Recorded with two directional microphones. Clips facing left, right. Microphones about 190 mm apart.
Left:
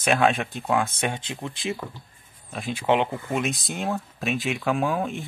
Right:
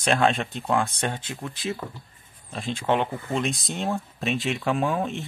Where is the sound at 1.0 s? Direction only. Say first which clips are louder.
Left 1 dB; 15° left (ahead or behind).